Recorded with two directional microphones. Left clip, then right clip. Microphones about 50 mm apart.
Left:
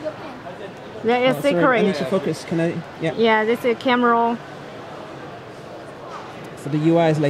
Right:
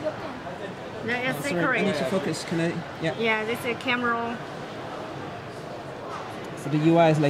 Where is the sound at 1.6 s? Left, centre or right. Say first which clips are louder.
Left 3 dB; centre.